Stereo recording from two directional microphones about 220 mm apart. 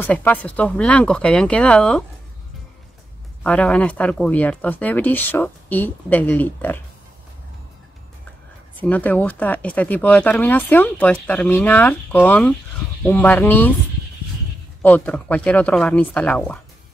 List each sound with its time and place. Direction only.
0.0 s speech: 10° left (ahead or behind)
3.4 s speech: 5° left (ahead or behind)
8.7 s speech: 5° left (ahead or behind)
14.8 s speech: 10° left (ahead or behind)